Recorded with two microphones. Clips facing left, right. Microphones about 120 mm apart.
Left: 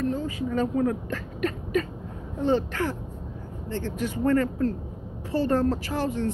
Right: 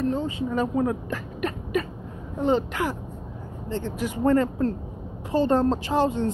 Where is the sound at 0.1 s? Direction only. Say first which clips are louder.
Right 2 dB; 25° right (ahead or behind).